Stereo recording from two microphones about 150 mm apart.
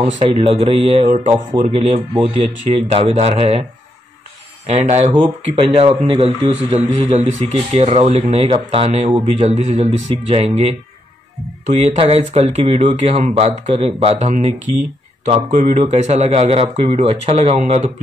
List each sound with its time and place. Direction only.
0.2 s a man's voice: 30° right (ahead or behind)
0.6 s a man's voice: 45° right (ahead or behind)
4.6 s a man's voice: 45° right (ahead or behind)